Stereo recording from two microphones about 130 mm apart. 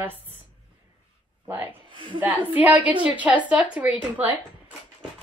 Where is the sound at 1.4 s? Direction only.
15° right (ahead or behind).